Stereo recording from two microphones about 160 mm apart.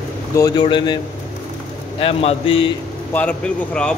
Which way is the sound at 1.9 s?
35° left (ahead or behind).